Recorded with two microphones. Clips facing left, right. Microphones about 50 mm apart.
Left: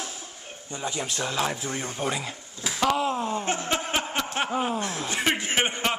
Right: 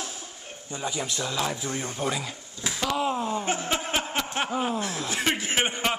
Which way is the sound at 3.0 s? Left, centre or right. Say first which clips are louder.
Even; centre.